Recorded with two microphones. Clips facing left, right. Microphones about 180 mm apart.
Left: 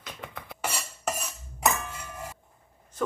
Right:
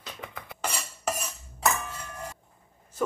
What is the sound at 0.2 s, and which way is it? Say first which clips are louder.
Music: even; centre (ahead or behind).